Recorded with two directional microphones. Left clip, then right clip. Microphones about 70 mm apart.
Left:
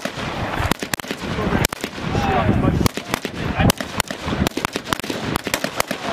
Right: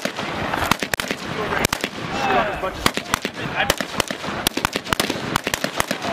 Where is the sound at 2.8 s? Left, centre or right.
Right.